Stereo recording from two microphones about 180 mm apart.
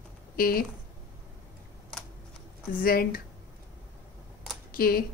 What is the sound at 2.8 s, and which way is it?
Speech, 55° left (ahead or behind).